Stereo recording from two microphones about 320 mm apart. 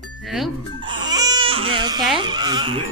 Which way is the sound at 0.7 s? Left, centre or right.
Centre.